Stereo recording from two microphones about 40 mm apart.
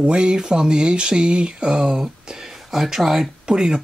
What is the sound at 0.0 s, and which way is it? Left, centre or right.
Speech, right.